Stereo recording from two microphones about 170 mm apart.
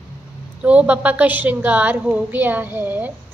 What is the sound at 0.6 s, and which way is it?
A woman's voice, 10° right (ahead or behind).